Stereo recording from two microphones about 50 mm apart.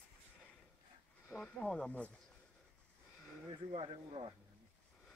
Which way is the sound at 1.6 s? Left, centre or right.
Centre.